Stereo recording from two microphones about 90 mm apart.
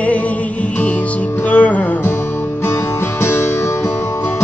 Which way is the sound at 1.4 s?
15° left (ahead or behind).